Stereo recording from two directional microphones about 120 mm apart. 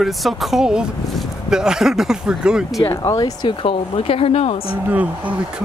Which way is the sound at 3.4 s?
50° left (ahead or behind).